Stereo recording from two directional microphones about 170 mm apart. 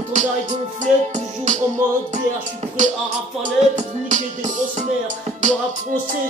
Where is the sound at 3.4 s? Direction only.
45° right (ahead or behind).